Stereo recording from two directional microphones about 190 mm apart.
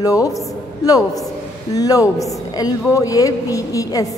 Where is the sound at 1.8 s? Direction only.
20° left (ahead or behind).